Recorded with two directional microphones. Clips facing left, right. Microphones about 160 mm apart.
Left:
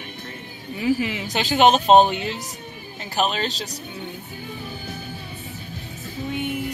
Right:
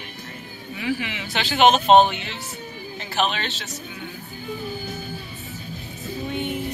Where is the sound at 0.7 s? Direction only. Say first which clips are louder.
Left 5 dB; 40° left (ahead or behind).